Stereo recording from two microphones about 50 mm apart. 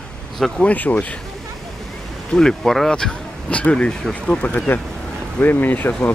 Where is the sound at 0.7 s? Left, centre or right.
Left.